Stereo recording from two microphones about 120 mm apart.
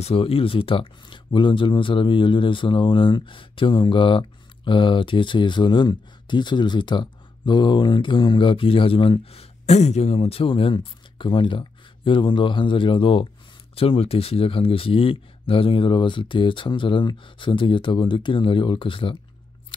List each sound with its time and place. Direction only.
0.0 s speech: 55° left (ahead or behind)